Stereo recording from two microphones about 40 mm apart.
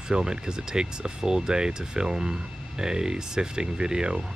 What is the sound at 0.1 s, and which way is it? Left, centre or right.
Speech, centre.